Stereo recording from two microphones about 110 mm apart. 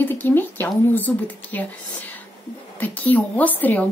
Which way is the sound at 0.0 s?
20° left (ahead or behind).